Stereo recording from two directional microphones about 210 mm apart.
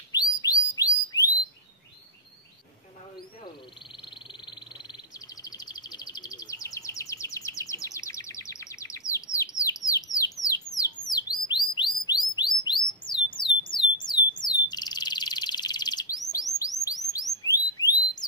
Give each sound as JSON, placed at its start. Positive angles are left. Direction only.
{"t": 0.1, "sound": "bird", "side_deg": 20}
{"t": 3.9, "sound": "bird", "side_deg": 20}
{"t": 11.1, "sound": "chirp", "side_deg": 20}
{"t": 13.3, "sound": "a sound", "side_deg": 20}
{"t": 14.4, "sound": "bird", "side_deg": 20}
{"t": 17.1, "sound": "chirp", "side_deg": 15}